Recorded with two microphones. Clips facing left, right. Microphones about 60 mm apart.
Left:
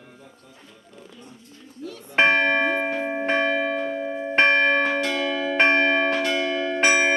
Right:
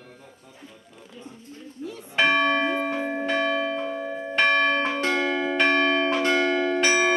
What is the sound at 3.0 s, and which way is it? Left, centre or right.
Church bell, centre.